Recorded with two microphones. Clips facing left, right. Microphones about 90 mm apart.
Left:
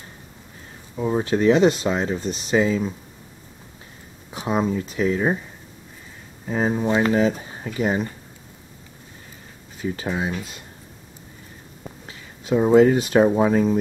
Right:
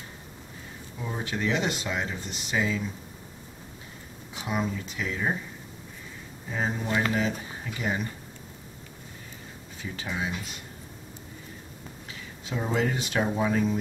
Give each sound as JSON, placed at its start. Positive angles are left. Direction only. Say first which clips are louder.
{"t": 1.2, "sound": "speech", "louder": "left 11 dB", "side_deg": 35}
{"t": 4.3, "sound": "speech", "louder": "left 8 dB", "side_deg": 30}
{"t": 6.5, "sound": "speech", "louder": "left 8 dB", "side_deg": 45}
{"t": 9.8, "sound": "speech", "louder": "left 8 dB", "side_deg": 35}
{"t": 12.4, "sound": "speech", "louder": "left 13 dB", "side_deg": 35}